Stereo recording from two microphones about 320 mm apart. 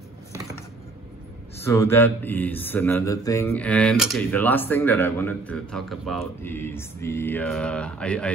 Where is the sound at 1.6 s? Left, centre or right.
Centre.